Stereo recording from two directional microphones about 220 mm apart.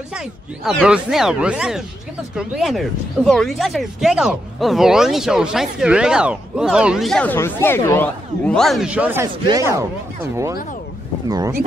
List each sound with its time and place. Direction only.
0.1 s speech: centre (ahead or behind); by 11.5 s 15° right (ahead or behind)